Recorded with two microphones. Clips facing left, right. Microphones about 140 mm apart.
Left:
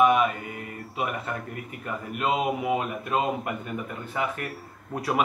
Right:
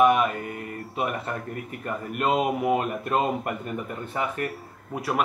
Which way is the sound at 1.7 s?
Centre (ahead or behind).